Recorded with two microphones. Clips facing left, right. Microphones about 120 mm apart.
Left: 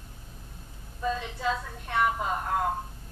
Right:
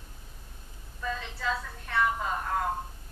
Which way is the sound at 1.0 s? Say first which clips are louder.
Left 4 dB; 20° left (ahead or behind).